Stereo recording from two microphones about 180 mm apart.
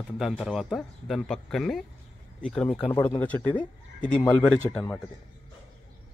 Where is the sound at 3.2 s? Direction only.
10° left (ahead or behind).